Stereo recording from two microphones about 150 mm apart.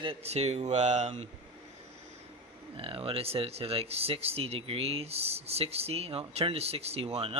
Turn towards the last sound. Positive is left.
turn(degrees=-40)  # may be behind; listen again after turning